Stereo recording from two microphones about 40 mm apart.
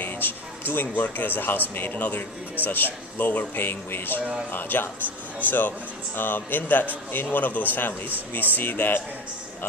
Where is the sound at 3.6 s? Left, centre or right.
Left.